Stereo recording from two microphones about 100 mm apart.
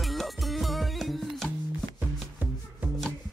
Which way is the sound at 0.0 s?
Centre (ahead or behind).